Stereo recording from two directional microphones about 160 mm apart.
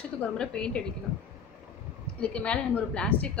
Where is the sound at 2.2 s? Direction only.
10° left (ahead or behind).